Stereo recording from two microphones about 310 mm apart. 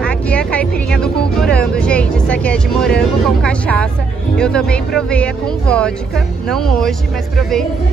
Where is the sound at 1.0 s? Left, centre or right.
Centre.